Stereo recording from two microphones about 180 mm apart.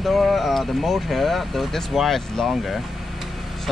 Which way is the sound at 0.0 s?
Centre (ahead or behind).